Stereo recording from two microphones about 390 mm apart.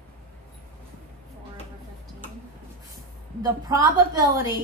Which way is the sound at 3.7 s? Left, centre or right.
Centre.